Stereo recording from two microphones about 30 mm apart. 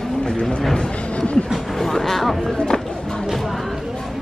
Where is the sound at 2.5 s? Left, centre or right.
Left.